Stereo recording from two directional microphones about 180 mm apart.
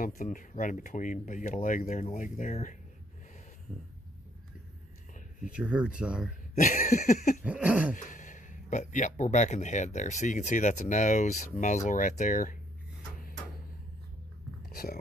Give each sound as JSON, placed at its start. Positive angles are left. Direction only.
{"t": 0.0, "sound": "speech", "side_deg": 45}
{"t": 5.5, "sound": "speech", "side_deg": -5}
{"t": 6.5, "sound": "speech", "side_deg": 45}
{"t": 7.4, "sound": "a sound", "side_deg": -5}
{"t": 7.9, "sound": "speech", "side_deg": 45}
{"t": 14.7, "sound": "speech", "side_deg": 55}